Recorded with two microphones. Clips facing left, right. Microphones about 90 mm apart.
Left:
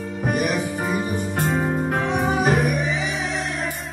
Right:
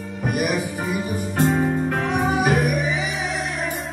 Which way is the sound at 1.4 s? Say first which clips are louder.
Right 3 dB; 40° left (ahead or behind).